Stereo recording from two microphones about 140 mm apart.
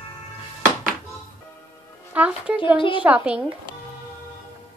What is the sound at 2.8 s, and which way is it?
Speech, 35° left (ahead or behind).